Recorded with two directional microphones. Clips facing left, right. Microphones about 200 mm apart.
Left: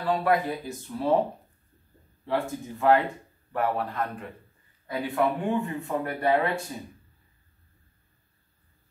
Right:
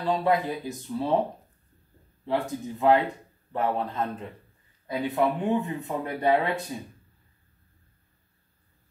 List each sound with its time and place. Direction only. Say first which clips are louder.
0.0 s speech: even; 20° right (ahead or behind)
2.2 s a man's voice: right 1 dB; 20° right (ahead or behind)